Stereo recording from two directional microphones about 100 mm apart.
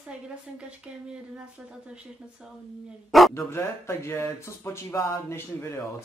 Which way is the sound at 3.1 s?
Centre (ahead or behind).